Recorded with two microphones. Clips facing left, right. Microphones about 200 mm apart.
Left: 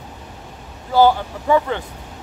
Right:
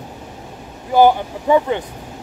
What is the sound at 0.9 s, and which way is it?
Speech, 15° right (ahead or behind).